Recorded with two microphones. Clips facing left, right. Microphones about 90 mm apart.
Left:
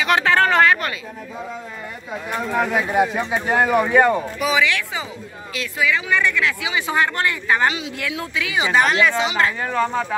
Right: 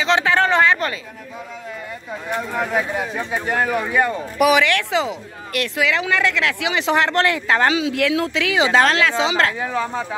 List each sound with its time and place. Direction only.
0.0 s speech: 20° right (ahead or behind)
2.5 s speech: 10° left (ahead or behind)
2.9 s speech: 20° left (ahead or behind)
4.4 s speech: 65° right (ahead or behind); by 9.5 s 90° right
9.6 s speech: 5° right (ahead or behind)